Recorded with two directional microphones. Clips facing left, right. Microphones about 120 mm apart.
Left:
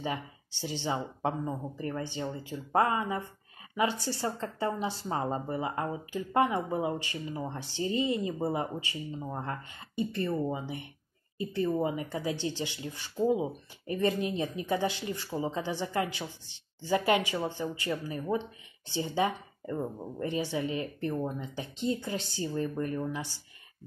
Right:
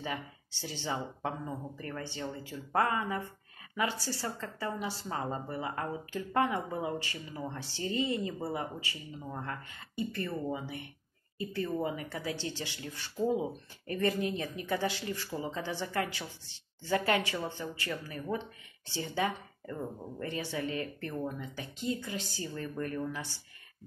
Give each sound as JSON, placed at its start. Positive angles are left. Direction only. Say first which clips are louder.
{"t": 0.0, "sound": "a woman's voice", "louder": "left 3 dB", "side_deg": 20}